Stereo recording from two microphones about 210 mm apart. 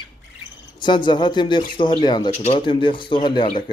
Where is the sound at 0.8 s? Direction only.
20° left (ahead or behind).